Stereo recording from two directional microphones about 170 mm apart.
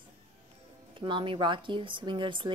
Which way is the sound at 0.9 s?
30° right (ahead or behind).